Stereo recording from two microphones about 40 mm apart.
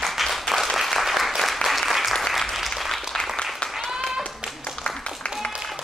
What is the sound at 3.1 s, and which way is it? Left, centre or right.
Applause, centre.